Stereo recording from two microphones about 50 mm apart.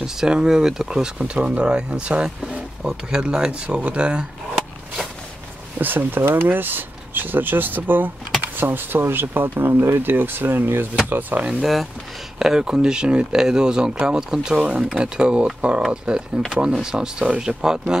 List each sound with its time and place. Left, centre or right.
0.0 s speech: centre
1.1 s speech: right
5.8 s speech: right
11.6 s speech: centre
12.4 s speech: centre